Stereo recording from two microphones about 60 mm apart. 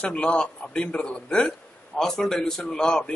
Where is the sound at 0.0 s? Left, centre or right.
Centre.